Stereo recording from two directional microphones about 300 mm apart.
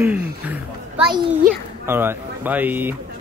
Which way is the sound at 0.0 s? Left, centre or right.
Centre.